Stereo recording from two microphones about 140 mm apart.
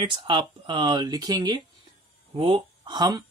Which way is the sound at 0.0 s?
35° right (ahead or behind).